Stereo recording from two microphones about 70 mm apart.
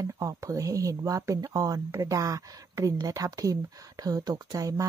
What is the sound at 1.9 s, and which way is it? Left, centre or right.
A woman's voice, right.